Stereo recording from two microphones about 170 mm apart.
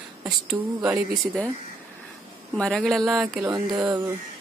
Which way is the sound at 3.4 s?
20° right (ahead or behind).